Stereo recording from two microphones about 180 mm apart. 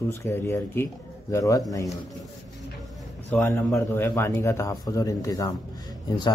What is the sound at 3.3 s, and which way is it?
A man's voice, 15° left (ahead or behind).